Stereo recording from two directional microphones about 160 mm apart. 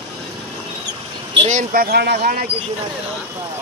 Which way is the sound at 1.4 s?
50° right (ahead or behind).